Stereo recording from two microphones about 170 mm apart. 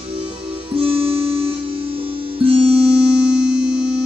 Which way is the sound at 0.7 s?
35° right (ahead or behind).